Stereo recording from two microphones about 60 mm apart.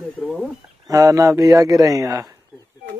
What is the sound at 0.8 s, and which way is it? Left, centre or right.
A man's voice, right.